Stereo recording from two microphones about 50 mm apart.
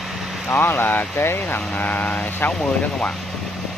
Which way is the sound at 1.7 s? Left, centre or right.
Left.